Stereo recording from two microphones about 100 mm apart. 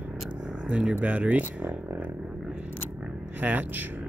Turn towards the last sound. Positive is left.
turn(degrees=-20)  # may be behind; listen again after turning